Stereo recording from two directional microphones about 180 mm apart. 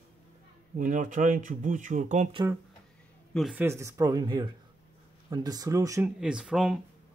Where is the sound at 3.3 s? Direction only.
Centre (ahead or behind).